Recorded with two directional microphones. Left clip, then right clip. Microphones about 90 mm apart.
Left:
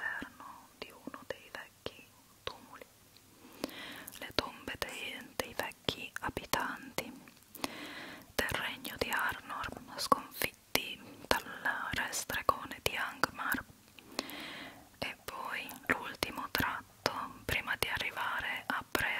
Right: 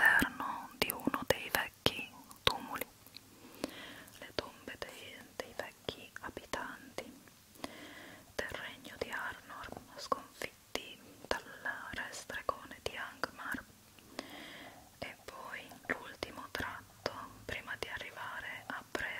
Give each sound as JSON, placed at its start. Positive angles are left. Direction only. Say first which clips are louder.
{"t": 0.0, "sound": "whispering", "louder": "right 12 dB", "side_deg": -40}
{"t": 3.5, "sound": "a sound", "louder": "left 2 dB", "side_deg": 5}
{"t": 4.4, "sound": "whispering", "louder": "left 5 dB", "side_deg": 25}